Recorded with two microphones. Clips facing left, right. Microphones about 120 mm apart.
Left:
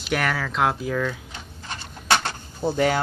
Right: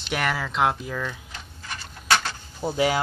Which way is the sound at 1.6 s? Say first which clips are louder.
Left 1 dB; 25° left (ahead or behind).